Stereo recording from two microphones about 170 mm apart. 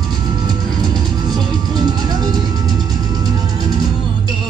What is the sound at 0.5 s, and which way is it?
Music, 25° right (ahead or behind).